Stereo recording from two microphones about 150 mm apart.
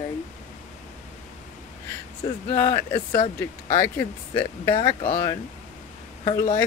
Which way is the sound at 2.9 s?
35° left (ahead or behind).